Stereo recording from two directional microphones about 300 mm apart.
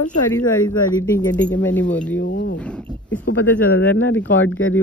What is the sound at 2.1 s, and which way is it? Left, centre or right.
Speech, left.